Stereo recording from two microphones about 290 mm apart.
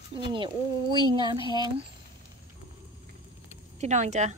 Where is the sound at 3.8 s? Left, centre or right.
Right.